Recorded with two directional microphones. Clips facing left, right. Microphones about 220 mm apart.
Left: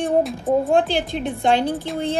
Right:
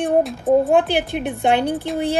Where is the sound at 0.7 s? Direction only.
60° right (ahead or behind).